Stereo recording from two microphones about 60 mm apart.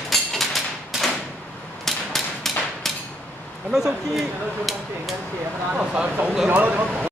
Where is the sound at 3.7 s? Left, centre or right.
Centre.